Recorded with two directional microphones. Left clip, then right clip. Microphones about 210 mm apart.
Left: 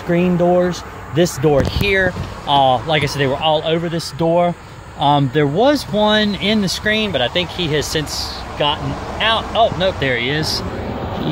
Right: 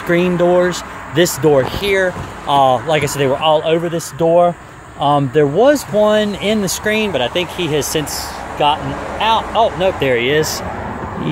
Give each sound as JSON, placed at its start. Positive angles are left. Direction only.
{"t": 0.1, "sound": "speech", "side_deg": -5}